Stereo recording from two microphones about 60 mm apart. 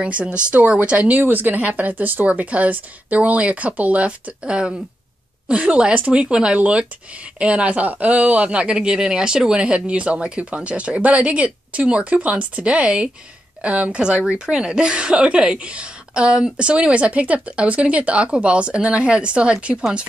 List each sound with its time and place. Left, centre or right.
0.0 s speech: centre